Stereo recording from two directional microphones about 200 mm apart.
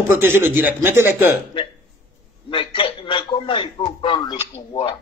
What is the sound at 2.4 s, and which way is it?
Speech, 25° left (ahead or behind).